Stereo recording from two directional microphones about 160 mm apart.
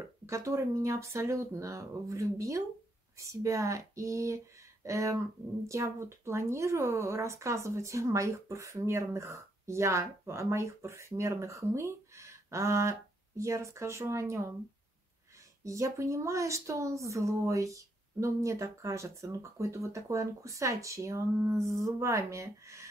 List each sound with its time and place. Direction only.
0.3 s speech: 20° right (ahead or behind)
15.6 s speech: 20° right (ahead or behind)